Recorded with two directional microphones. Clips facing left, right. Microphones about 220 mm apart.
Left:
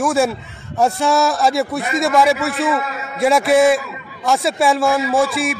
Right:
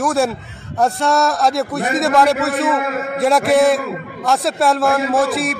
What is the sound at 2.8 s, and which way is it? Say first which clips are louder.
Speech: right 5 dB; 50° right (ahead or behind).